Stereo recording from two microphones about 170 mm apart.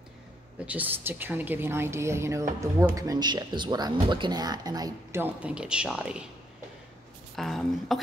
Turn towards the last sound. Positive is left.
turn(degrees=0)  # may be behind; listen again after turning